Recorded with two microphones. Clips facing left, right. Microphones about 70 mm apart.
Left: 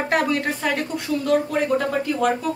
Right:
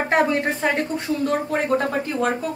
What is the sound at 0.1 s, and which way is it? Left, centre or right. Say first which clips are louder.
A woman's voice: right 2 dB; right.